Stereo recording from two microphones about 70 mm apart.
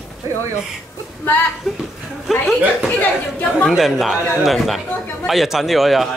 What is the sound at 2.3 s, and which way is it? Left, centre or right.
Speech, centre.